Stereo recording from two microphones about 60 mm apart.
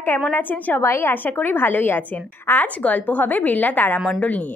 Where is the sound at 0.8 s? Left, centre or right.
Left.